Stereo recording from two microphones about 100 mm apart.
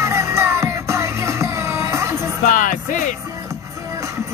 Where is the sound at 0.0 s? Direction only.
30° right (ahead or behind).